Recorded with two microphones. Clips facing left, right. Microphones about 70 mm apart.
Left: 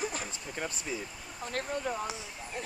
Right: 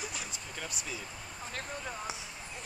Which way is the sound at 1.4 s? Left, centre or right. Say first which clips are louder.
Left 7 dB; left.